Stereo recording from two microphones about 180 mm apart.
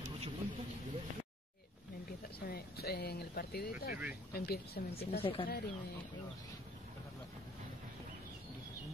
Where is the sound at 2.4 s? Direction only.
60° left (ahead or behind).